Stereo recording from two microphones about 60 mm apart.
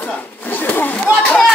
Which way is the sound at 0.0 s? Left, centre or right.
Left.